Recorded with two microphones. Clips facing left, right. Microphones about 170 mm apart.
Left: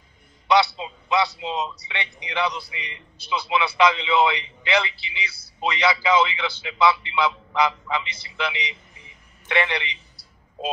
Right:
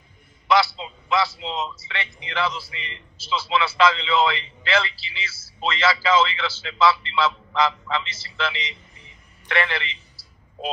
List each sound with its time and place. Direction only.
0.5 s a man's voice: 20° left (ahead or behind)